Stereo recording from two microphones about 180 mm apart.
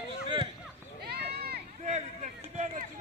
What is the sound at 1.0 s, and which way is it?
Run, 60° right (ahead or behind).